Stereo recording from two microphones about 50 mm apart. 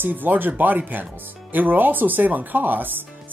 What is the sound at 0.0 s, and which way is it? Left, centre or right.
Speech, right.